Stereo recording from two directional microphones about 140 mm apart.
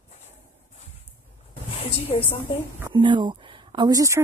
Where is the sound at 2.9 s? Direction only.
35° right (ahead or behind).